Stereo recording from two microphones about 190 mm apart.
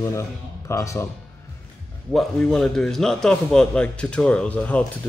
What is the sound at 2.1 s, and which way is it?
A man's voice, centre (ahead or behind).